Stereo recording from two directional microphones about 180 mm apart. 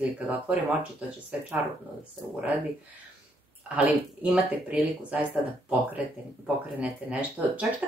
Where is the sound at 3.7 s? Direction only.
5° right (ahead or behind).